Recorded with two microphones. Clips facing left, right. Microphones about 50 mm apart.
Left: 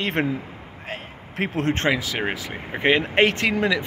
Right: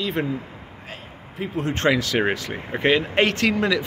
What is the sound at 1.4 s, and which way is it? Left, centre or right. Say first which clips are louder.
Speech: left 4 dB; left.